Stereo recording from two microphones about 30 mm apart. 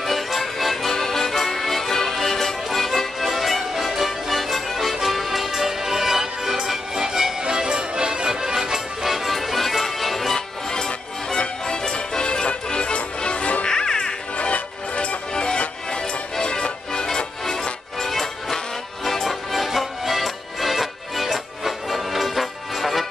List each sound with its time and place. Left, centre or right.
0.0 s music: centre
7.4 s music: right; by 10.4 s centre
10.7 s music: left
13.7 s music: left
14.3 s music: left
15.3 s music: left
18.0 s music: centre